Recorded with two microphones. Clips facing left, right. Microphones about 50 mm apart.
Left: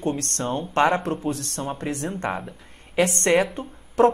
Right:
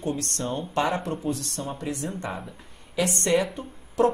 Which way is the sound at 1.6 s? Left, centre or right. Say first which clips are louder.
Left 4 dB; left.